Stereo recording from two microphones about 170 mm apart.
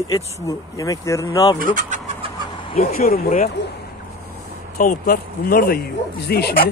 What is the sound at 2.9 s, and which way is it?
Speech, 60° left (ahead or behind).